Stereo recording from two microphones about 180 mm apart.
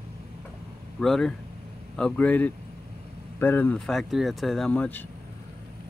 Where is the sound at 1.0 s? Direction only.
5° left (ahead or behind).